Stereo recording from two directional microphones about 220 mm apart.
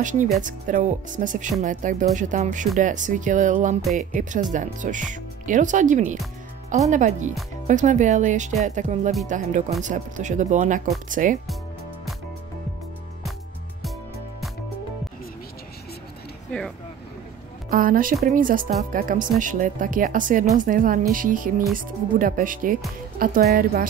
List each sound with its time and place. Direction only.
0.0 s speech: 35° right (ahead or behind)
17.6 s speech: 40° right (ahead or behind)